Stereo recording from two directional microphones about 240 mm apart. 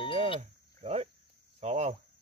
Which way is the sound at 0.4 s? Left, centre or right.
Right.